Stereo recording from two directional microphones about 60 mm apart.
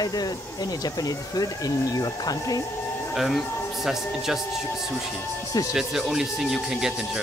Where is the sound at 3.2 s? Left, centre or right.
Centre.